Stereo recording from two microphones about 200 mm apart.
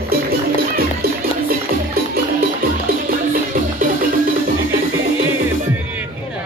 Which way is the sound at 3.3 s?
45° right (ahead or behind).